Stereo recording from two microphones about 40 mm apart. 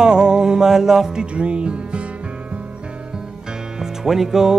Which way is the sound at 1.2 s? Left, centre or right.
Right.